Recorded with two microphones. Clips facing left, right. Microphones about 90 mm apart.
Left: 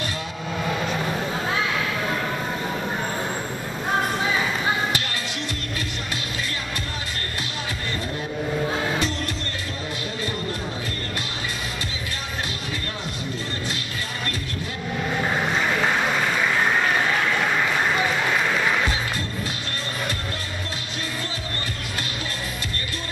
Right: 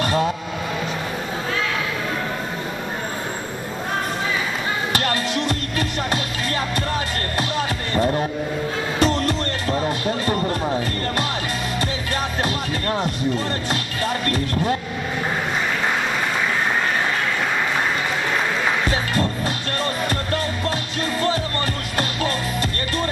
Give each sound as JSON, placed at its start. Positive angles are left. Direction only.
{"t": 7.9, "sound": "a sound", "side_deg": -50}
{"t": 9.0, "sound": "music", "side_deg": -50}
{"t": 14.2, "sound": "music", "side_deg": -50}